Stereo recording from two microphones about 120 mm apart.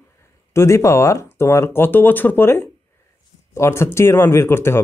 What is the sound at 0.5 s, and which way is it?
Speech, 20° left (ahead or behind).